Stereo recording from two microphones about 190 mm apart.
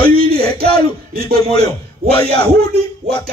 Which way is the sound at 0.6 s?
55° right (ahead or behind).